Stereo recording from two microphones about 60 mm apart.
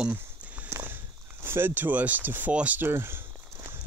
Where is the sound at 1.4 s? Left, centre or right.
Right.